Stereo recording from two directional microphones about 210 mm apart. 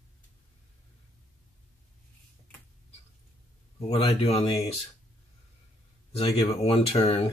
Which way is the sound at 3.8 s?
25° left (ahead or behind).